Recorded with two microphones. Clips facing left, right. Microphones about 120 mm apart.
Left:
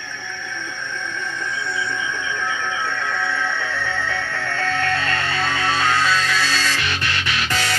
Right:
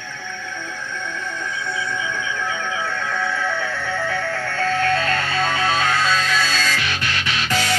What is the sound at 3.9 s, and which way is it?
Music, 25° left (ahead or behind).